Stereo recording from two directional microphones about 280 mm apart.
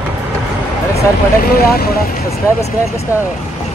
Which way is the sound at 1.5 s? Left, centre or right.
Left.